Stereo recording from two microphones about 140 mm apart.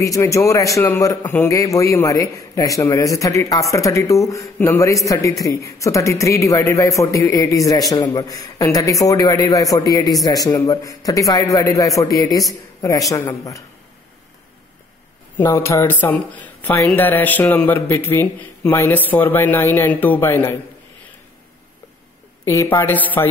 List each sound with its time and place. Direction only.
0.0 s a man's voice: 20° left (ahead or behind)
15.3 s speech: 20° left (ahead or behind)
22.4 s speech: 20° left (ahead or behind)